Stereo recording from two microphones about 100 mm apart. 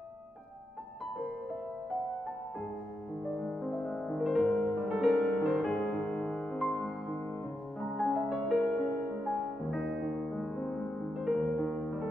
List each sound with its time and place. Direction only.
3.3 s music: 5° left (ahead or behind)
11.5 s music: 20° left (ahead or behind)